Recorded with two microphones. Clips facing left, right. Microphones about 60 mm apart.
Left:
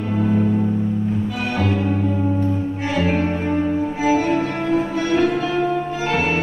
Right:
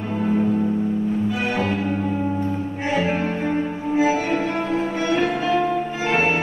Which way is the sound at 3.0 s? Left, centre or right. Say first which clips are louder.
Left 4 dB; right.